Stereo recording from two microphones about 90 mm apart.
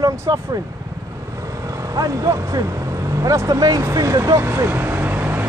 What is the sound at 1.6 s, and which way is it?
Speech, 40° right (ahead or behind).